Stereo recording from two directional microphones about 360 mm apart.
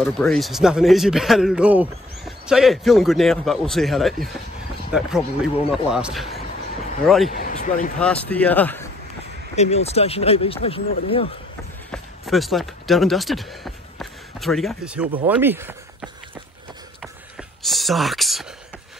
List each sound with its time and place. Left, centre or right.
0.0 s speech: centre
7.3 s speech: left
8.0 s speech: centre
9.6 s speech: centre
11.9 s speech: centre
17.0 s a sound: centre